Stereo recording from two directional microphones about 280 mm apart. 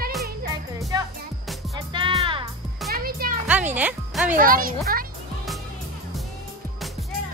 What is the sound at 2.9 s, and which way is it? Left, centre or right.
Music, right.